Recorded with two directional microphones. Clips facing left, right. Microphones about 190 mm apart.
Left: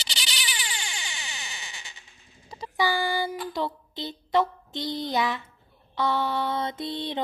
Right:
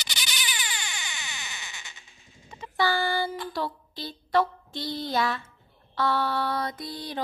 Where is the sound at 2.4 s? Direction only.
35° left (ahead or behind).